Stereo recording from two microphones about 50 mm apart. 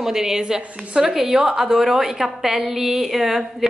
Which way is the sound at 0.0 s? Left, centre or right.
Centre.